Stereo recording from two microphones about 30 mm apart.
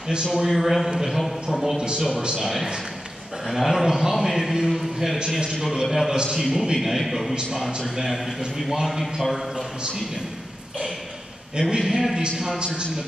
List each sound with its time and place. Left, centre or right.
0.2 s a man's voice: centre
0.5 s a man's voice: centre
11.7 s a man's voice: centre
12.5 s a man's voice: right